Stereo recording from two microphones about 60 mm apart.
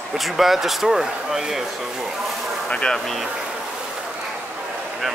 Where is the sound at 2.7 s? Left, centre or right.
Centre.